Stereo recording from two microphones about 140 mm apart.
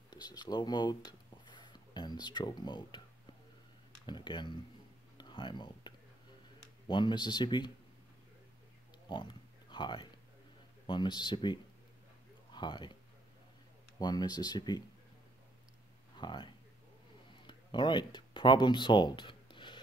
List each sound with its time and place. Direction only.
0.1 s a sound: 30° left (ahead or behind)
4.0 s speech: 35° left (ahead or behind)
5.1 s a sound: 35° left (ahead or behind)
6.9 s speech: 35° left (ahead or behind)
9.1 s pig: 35° left (ahead or behind)
10.9 s speech: 30° left (ahead or behind)
13.9 s speech: 30° left (ahead or behind)
16.2 s speech: 35° left (ahead or behind)